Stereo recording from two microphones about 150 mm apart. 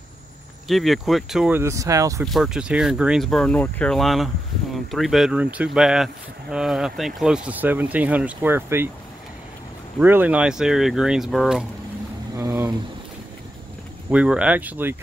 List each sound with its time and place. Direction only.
0.7 s speech: centre (ahead or behind)
1.5 s speech: 20° right (ahead or behind)
2.2 s speech: centre (ahead or behind)
9.9 s speech: 10° right (ahead or behind)
12.4 s speech: 20° right (ahead or behind)
14.1 s speech: 5° right (ahead or behind)